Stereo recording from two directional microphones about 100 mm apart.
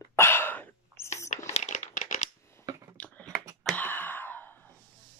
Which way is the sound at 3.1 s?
35° right (ahead or behind).